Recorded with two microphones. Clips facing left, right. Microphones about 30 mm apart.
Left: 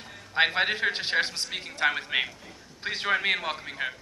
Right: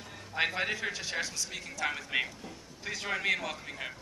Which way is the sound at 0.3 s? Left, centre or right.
Left.